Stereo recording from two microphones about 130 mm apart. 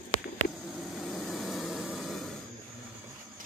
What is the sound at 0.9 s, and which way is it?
Vehicle, centre (ahead or behind).